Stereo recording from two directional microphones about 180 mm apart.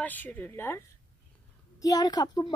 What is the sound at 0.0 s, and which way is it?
A woman's voice, 10° left (ahead or behind).